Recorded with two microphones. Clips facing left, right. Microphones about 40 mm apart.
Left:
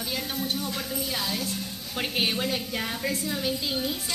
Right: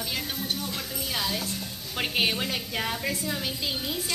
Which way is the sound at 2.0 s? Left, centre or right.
Centre.